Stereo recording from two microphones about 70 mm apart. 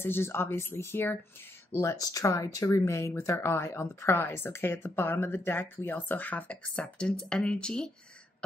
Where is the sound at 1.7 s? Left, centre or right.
Left.